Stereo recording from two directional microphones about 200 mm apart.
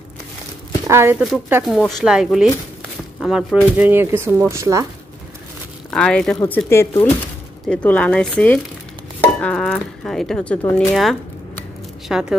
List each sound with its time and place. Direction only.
0.8 s speech: 10° right (ahead or behind)
1.5 s speech: centre (ahead or behind)
5.9 s speech: 5° left (ahead or behind)